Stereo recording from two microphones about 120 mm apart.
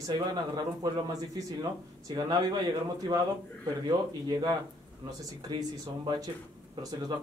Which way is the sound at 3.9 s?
35° right (ahead or behind).